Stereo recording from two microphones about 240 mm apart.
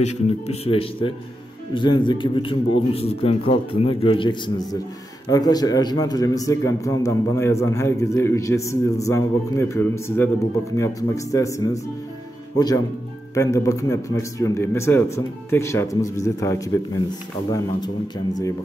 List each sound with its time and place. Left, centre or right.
0.0 s a man's voice: left